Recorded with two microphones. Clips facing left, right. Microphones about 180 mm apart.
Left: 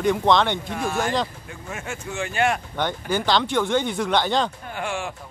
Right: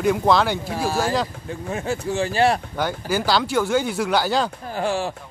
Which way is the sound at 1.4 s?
35° right (ahead or behind).